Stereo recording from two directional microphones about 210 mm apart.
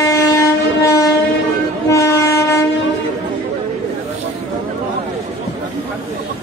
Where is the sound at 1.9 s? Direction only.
15° left (ahead or behind).